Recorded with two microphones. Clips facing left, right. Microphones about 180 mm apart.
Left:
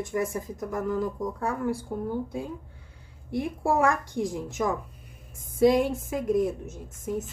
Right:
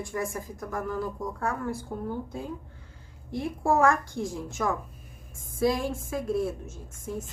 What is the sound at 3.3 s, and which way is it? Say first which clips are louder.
A woman's voice: even; 15° left (ahead or behind).